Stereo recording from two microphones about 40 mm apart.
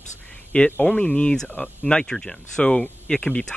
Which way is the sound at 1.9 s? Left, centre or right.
Centre.